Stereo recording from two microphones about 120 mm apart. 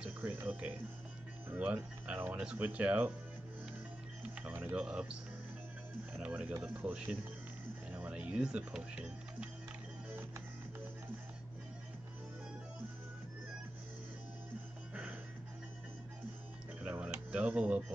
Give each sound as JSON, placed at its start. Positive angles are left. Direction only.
{"t": 0.0, "sound": "speech", "side_deg": -15}
{"t": 4.2, "sound": "speech", "side_deg": -10}
{"t": 6.1, "sound": "speech", "side_deg": -10}
{"t": 16.8, "sound": "music", "side_deg": -10}